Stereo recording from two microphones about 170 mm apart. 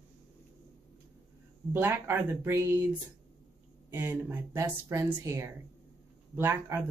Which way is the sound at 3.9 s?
10° right (ahead or behind).